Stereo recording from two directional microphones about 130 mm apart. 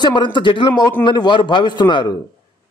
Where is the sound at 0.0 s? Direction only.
35° left (ahead or behind).